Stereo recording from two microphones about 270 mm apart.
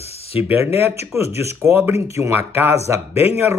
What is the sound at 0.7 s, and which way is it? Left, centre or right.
Speech, centre.